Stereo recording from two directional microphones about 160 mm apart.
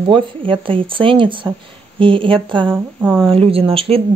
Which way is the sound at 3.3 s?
35° right (ahead or behind).